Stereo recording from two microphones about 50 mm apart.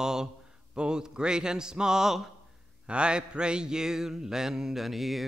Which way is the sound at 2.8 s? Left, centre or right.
Right.